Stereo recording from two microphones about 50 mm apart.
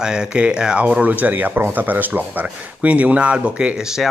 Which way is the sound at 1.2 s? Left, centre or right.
Right.